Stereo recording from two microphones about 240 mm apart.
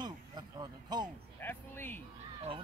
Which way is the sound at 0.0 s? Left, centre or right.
Centre.